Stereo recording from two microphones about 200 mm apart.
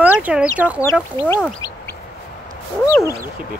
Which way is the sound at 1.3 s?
10° left (ahead or behind).